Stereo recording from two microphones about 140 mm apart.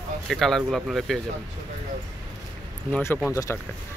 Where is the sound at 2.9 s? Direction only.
20° left (ahead or behind).